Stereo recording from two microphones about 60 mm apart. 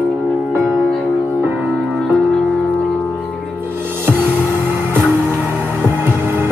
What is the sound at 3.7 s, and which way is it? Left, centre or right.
Music, right.